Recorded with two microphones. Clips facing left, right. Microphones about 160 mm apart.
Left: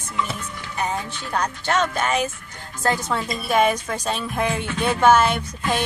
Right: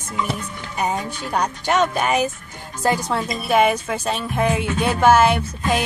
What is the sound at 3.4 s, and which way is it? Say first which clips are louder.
A woman's voice: right 2 dB; 5° right (ahead or behind).